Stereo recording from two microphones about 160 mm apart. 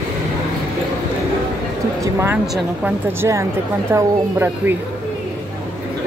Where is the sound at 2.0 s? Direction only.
15° right (ahead or behind).